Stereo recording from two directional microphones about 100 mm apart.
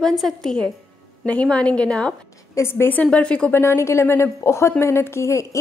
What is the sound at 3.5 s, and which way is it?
A woman's voice, 25° left (ahead or behind).